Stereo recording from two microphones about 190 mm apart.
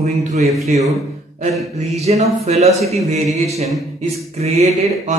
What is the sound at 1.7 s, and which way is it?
Speech, 35° right (ahead or behind).